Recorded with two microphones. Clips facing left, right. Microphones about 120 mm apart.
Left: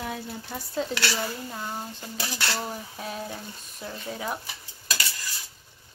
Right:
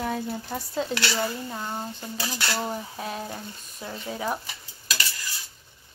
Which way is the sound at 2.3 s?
10° right (ahead or behind).